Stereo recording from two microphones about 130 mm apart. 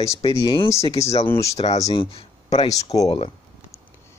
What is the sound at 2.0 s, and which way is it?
Speech, 45° left (ahead or behind).